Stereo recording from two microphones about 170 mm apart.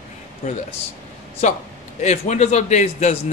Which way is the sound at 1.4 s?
45° left (ahead or behind).